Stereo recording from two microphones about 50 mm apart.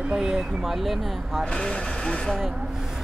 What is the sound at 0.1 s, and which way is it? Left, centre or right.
Speech, centre.